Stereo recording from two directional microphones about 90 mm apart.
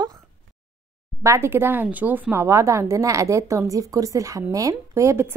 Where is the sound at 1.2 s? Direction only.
30° right (ahead or behind).